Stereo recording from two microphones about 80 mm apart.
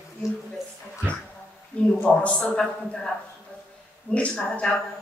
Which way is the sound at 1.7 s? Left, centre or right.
Centre.